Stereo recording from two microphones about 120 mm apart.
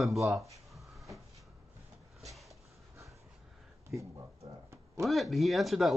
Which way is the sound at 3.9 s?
Centre (ahead or behind).